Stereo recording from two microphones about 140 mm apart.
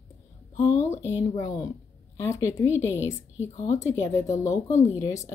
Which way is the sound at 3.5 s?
60° left (ahead or behind).